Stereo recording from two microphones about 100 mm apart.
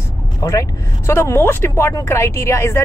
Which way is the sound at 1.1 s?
20° left (ahead or behind).